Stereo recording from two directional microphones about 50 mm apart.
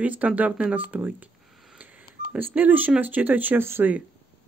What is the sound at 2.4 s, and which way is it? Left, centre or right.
Speech, right.